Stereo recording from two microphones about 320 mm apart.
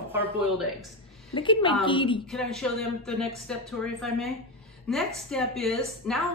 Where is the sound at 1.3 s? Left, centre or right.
Centre.